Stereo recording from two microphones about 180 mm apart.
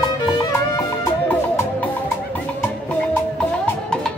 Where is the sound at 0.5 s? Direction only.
15° left (ahead or behind).